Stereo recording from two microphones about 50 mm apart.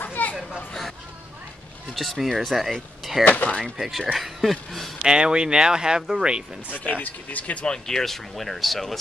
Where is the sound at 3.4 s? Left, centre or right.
Left.